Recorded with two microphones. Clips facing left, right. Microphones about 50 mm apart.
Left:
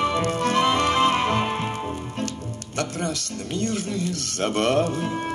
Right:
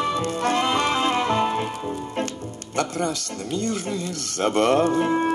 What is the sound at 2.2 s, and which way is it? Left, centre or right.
Music, right.